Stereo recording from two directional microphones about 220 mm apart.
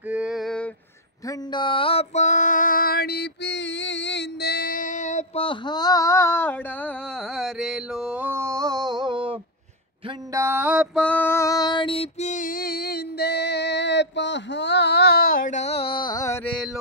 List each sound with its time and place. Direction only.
0.1 s a sound: 5° right (ahead or behind)
1.2 s female singing: 20° left (ahead or behind); by 9.4 s 25° right (ahead or behind)
10.0 s mantra: 15° right (ahead or behind)
11.0 s female singing: 5° left (ahead or behind)